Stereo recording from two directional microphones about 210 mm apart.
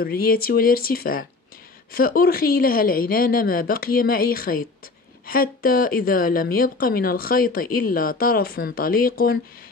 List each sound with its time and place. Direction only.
0.0 s speech: 45° left (ahead or behind)